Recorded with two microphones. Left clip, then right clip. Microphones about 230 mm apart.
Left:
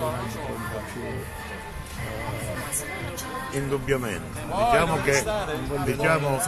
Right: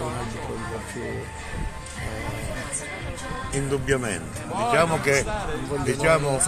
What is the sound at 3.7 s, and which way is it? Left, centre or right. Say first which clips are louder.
A man's voice: right 2 dB; right.